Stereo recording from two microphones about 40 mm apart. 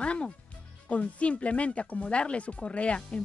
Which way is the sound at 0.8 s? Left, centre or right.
Left.